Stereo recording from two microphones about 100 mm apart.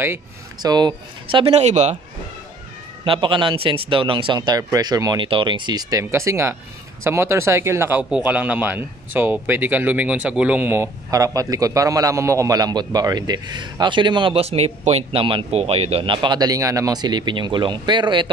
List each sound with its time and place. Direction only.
0.6 s a man's voice: 45° right (ahead or behind)
1.4 s speech: 90° right
3.1 s speech: 55° right (ahead or behind)
4.4 s a man's voice: 40° right (ahead or behind)
5.2 s a man's voice: 55° right (ahead or behind); by 8.0 s 25° right (ahead or behind)
8.0 s speech: 10° right (ahead or behind)
11.1 s a man's voice: 35° right (ahead or behind); by 14.4 s 55° right (ahead or behind)
14.4 s a man's voice: 90° right; by 18.3 s 55° right (ahead or behind)